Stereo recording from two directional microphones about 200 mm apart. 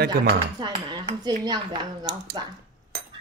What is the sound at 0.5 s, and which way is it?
Speech, 20° right (ahead or behind).